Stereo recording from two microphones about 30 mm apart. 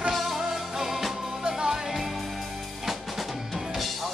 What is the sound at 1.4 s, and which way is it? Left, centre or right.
Music, right.